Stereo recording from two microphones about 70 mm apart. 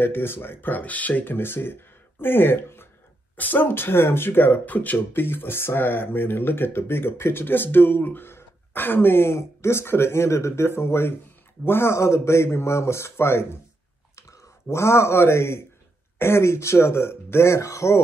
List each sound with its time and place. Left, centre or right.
0.0 s speech: left
14.7 s speech: left